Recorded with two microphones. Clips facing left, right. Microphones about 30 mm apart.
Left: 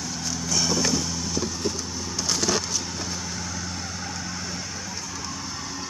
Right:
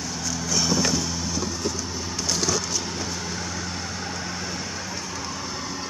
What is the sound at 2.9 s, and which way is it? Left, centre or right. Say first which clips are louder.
Vehicle: right 2 dB; right.